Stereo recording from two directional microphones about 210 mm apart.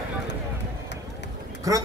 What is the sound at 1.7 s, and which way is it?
Speech, 15° right (ahead or behind).